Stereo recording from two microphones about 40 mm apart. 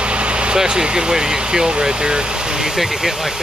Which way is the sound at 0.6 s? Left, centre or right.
Centre.